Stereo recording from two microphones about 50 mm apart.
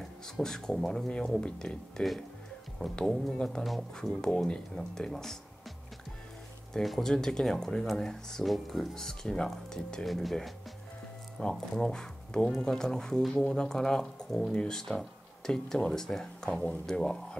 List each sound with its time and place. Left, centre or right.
0.0 s speech: centre
2.8 s speech: centre
3.6 s speech: centre
6.7 s speech: centre
10.0 s speech: centre
11.4 s speech: centre